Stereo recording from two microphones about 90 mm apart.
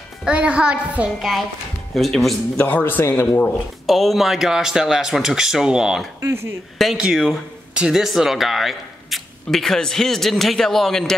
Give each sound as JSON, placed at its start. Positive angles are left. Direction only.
{"t": 0.2, "sound": "a child's voice", "side_deg": -10}
{"t": 2.0, "sound": "speech", "side_deg": 0}
{"t": 2.5, "sound": "speech", "side_deg": 20}
{"t": 3.8, "sound": "speech", "side_deg": 0}
{"t": 6.2, "sound": "speech", "side_deg": -25}
{"t": 6.8, "sound": "speech", "side_deg": -5}